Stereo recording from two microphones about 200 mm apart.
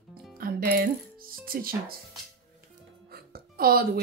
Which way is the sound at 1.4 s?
45° right (ahead or behind).